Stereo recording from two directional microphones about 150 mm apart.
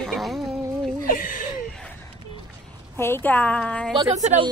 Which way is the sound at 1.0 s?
70° left (ahead or behind).